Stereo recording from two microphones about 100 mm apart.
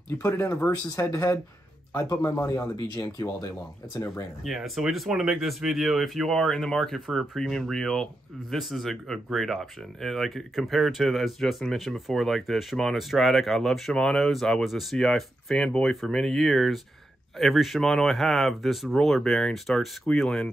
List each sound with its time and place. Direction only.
0.3 s speech: 30° left (ahead or behind)
4.4 s speech: centre (ahead or behind)